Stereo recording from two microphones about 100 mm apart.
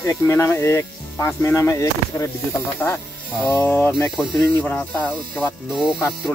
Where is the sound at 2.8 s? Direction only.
20° left (ahead or behind).